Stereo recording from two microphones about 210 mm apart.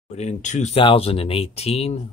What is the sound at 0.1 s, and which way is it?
Speech, 35° left (ahead or behind).